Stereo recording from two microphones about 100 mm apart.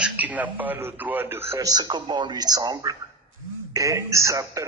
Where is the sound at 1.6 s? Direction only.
45° right (ahead or behind).